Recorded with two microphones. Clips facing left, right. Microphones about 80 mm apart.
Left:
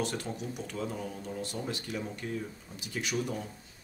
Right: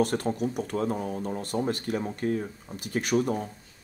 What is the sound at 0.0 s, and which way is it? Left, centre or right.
Speech, right.